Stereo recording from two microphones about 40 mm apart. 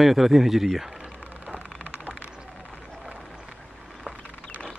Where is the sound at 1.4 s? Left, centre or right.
Right.